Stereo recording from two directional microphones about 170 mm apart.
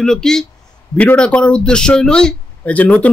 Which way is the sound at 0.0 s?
5° left (ahead or behind).